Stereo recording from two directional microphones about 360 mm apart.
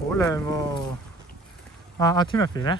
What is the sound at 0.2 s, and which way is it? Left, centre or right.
Speech, centre.